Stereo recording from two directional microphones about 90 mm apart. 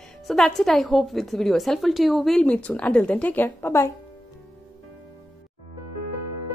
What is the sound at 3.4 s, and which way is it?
Speech, 30° left (ahead or behind).